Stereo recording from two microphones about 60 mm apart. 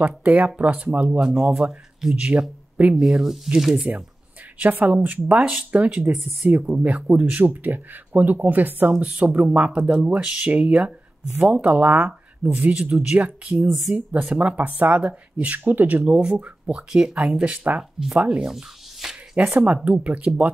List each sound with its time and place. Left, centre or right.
0.0 s speech: right
1.2 s speech: centre
3.0 s speech: centre
3.9 s speech: right
13.7 s speech: centre
14.2 s speech: centre
17.4 s speech: right
17.9 s speech: centre
18.4 s zipper: centre
19.5 s speech: right